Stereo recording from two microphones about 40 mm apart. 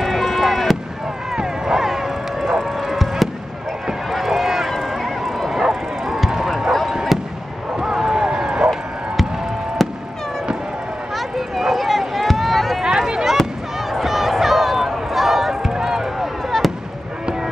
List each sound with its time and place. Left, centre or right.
0.0 s fireworks: centre
1.3 s a sound: centre
4.1 s run: centre
6.9 s fireworks: centre
7.7 s run: centre
9.8 s cat: centre
11.1 s run: centre
12.8 s a sound: centre
13.3 s fireworks: centre